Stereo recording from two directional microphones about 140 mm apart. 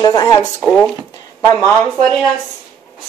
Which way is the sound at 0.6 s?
10° left (ahead or behind).